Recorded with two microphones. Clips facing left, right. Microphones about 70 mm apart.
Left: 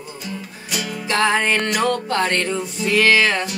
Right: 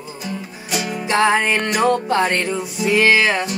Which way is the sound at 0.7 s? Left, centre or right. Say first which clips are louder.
Right 3 dB; right.